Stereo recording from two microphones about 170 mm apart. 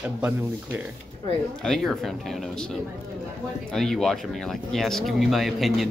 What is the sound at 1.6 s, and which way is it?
Speech, centre (ahead or behind).